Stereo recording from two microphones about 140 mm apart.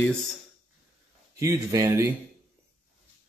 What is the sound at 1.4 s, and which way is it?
Speech, 20° right (ahead or behind).